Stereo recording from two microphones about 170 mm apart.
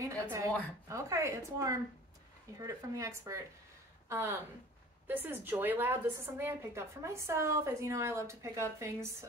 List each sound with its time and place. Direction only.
0.0 s a woman's voice: 20° right (ahead or behind)